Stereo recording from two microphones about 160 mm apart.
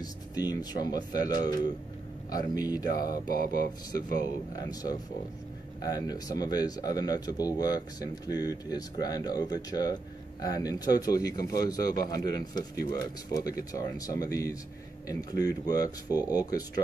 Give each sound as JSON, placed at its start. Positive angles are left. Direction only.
{"t": 0.0, "sound": "speech", "side_deg": 25}